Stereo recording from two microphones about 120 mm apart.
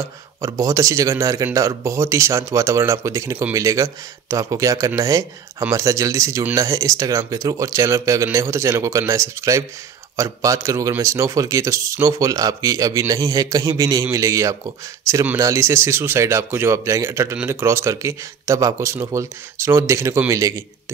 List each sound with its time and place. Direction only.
0.4 s speech: 25° right (ahead or behind)